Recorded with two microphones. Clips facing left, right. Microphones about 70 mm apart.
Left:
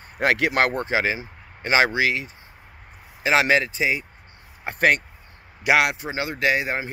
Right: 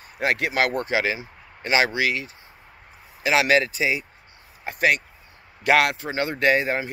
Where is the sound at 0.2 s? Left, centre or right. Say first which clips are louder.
Left 3 dB; left.